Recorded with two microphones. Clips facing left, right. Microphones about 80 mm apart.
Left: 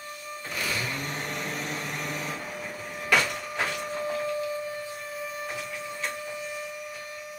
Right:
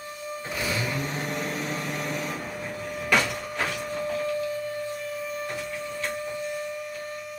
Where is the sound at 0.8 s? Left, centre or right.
Centre.